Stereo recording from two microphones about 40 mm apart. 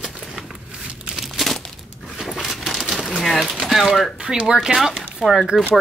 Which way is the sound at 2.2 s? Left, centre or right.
Centre.